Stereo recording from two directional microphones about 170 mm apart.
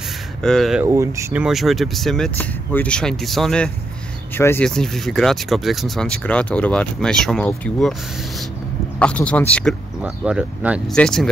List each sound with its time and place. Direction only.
0.4 s speech: centre (ahead or behind)
0.8 s speech: 20° right (ahead or behind)
1.4 s speech: centre (ahead or behind)
4.4 s speech: 15° left (ahead or behind)
4.6 s speech: 5° left (ahead or behind)
9.0 s speech: 5° left (ahead or behind)
10.0 s speech: 5° right (ahead or behind)